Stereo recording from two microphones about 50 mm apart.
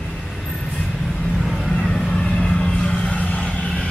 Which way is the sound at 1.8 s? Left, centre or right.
Centre.